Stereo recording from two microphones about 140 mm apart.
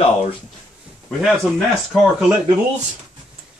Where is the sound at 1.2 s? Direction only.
Centre (ahead or behind).